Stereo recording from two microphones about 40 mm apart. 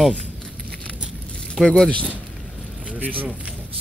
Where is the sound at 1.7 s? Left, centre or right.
Left.